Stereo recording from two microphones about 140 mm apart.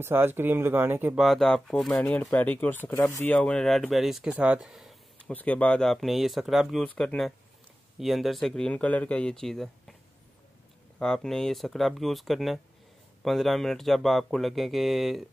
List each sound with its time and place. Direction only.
0.0 s speech: 15° right (ahead or behind)
1.2 s speech: centre (ahead or behind)
4.4 s a sound: 5° right (ahead or behind)
5.3 s speech: 10° left (ahead or behind)
11.0 s speech: 5° left (ahead or behind)